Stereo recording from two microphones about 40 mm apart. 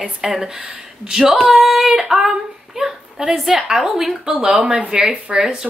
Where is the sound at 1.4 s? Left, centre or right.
Centre.